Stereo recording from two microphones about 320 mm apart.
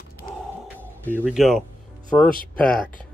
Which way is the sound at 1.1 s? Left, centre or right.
Centre.